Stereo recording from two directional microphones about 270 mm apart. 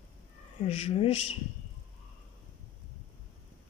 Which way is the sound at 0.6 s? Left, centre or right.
Left.